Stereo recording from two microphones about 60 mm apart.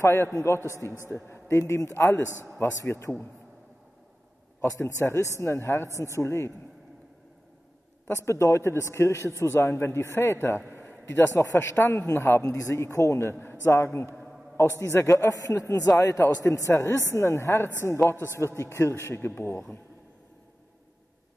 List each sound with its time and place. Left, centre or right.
0.0 s a man's voice: left
1.0 s a man's voice: left
4.6 s a man's voice: left
8.1 s a man's voice: left
10.7 s a sound: left
11.3 s a man's voice: left
12.4 s a man's voice: left
18.1 s a man's voice: right
18.6 s a man's voice: left